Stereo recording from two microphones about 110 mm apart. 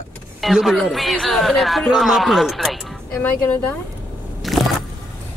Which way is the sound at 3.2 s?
20° left (ahead or behind).